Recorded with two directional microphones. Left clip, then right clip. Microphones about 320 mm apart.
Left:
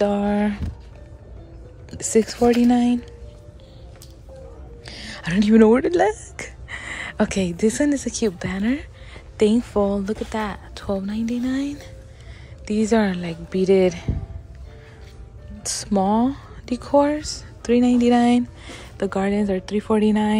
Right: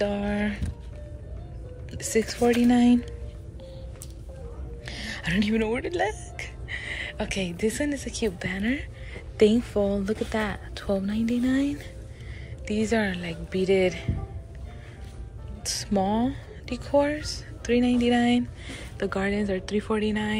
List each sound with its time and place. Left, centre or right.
0.0 s speech: centre
1.9 s speech: centre
4.8 s speech: centre
7.2 s speech: centre
15.6 s speech: centre